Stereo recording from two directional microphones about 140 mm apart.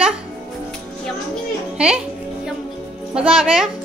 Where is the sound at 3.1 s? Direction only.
5° right (ahead or behind).